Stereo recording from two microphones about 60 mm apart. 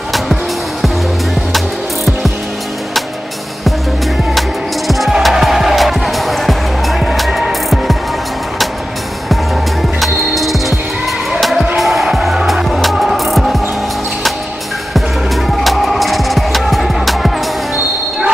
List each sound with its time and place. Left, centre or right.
4.4 s music: centre
9.3 s music: centre
11.7 s music: centre
15.5 s music: centre